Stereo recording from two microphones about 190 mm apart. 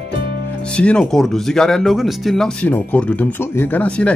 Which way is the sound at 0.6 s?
5° left (ahead or behind).